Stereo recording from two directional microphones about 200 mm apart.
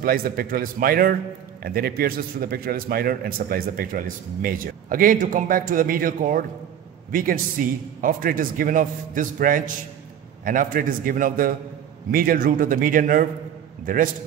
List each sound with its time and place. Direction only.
0.0 s a man's voice: 45° right (ahead or behind)